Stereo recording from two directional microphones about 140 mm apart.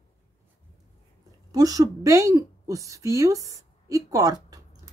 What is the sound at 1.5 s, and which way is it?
A woman's voice, 25° right (ahead or behind).